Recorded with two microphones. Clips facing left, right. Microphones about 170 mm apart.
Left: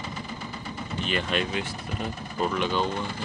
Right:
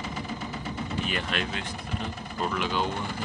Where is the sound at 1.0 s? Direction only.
Centre (ahead or behind).